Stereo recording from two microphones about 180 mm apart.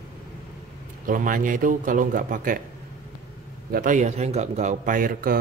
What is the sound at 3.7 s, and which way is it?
A man's voice, 45° right (ahead or behind).